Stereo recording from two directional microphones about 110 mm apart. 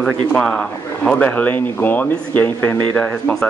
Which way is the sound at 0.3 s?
10° left (ahead or behind).